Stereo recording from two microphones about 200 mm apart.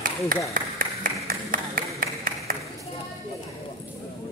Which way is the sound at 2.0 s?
45° right (ahead or behind).